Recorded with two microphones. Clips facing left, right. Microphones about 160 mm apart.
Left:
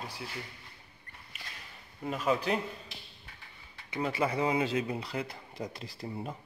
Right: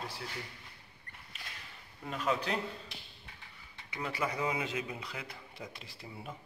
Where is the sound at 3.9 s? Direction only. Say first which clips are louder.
Left 5 dB; 30° left (ahead or behind).